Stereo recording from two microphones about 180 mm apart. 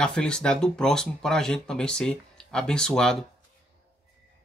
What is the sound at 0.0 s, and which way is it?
Speech, 5° left (ahead or behind).